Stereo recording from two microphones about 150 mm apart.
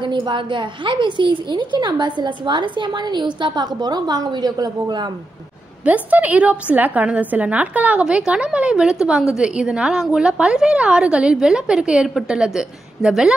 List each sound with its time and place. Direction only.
0.0 s a woman's voice: 30° right (ahead or behind)
5.9 s a woman's voice: 10° right (ahead or behind)